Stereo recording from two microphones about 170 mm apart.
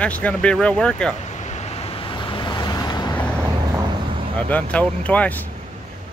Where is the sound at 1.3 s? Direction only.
40° left (ahead or behind); by 3.1 s 25° left (ahead or behind).